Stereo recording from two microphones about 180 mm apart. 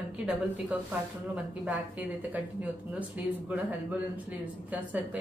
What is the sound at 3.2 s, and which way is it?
A woman's voice, 10° right (ahead or behind).